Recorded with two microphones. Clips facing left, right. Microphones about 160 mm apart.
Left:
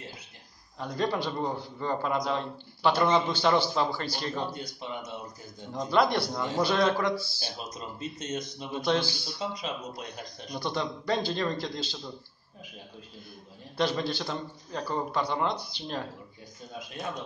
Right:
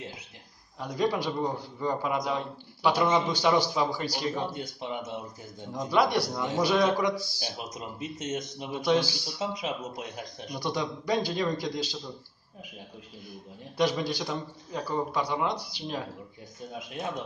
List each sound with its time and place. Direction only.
0.7 s a man's voice: 10° right (ahead or behind)
4.7 s speech: 20° right (ahead or behind)
5.8 s a man's voice: 10° right (ahead or behind)
9.4 s a man's voice: 20° right (ahead or behind)
13.7 s a man's voice: 10° right (ahead or behind)